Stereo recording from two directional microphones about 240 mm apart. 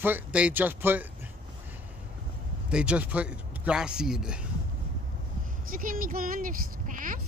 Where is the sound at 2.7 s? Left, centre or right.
Centre.